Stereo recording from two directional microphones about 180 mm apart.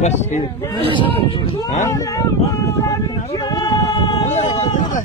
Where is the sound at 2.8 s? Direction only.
20° left (ahead or behind).